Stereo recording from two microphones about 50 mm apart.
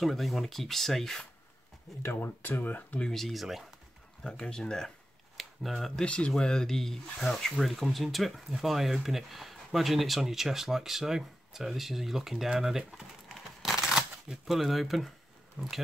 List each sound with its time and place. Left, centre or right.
0.0 s speech: centre
2.1 s speech: left
3.1 s speech: centre
4.2 s speech: centre
5.4 s speech: centre
6.0 s speech: left; by 15.1 s centre
15.6 s speech: right